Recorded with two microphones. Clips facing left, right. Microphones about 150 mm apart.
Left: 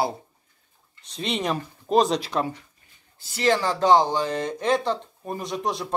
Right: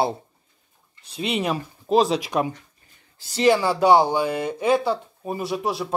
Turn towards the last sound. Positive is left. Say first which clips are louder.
# right 2 dB
turn(degrees=-5)  # may be behind; listen again after turning